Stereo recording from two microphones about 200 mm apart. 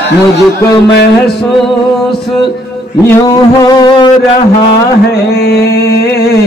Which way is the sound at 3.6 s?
20° left (ahead or behind).